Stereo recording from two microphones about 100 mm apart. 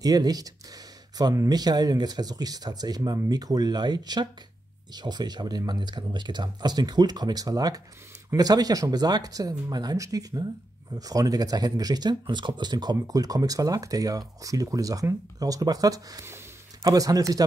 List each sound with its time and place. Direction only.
0.0 s speech: 40° right (ahead or behind)